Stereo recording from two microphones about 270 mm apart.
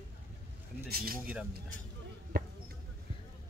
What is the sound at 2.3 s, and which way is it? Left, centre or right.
Basketball bounce, right.